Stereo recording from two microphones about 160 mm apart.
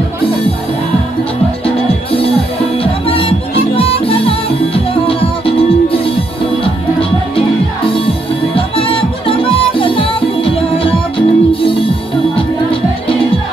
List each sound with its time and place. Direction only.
2.8 s music: 35° left (ahead or behind)
8.5 s music: 35° left (ahead or behind)